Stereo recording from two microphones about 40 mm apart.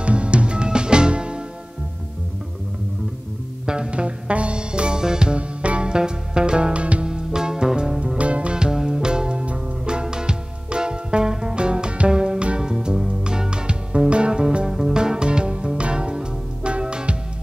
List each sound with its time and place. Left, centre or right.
0.0 s music: right
3.6 s music: right
7.1 s music: centre
8.2 s music: right; by 13.1 s centre
13.2 s music: right
14.7 s music: centre
15.0 s music: right